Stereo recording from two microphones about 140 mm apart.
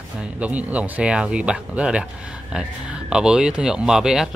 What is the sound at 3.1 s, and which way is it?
Speech, 5° right (ahead or behind).